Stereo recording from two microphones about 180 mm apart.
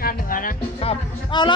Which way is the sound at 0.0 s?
50° left (ahead or behind).